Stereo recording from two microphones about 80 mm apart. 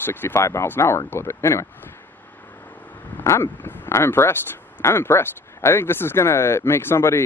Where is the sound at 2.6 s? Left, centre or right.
Centre.